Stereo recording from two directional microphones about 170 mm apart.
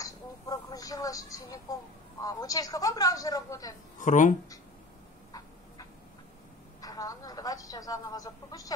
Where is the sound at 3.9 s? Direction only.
50° left (ahead or behind).